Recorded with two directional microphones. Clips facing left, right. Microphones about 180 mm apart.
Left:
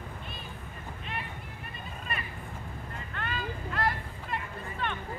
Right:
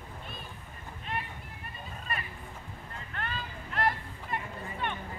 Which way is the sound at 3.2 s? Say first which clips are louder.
Left 3 dB; 25° right (ahead or behind).